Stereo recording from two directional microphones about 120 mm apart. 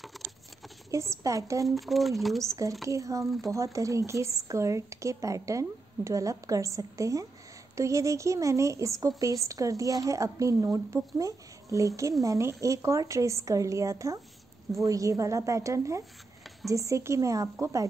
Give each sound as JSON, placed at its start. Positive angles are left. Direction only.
{"t": 0.9, "sound": "speech", "side_deg": -25}
{"t": 1.8, "sound": "speech", "side_deg": 0}
{"t": 2.4, "sound": "speech", "side_deg": -25}